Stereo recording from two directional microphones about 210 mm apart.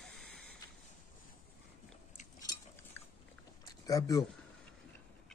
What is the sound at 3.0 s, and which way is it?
Dog, 10° left (ahead or behind).